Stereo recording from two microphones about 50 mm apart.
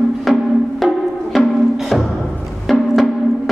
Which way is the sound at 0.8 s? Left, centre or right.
Centre.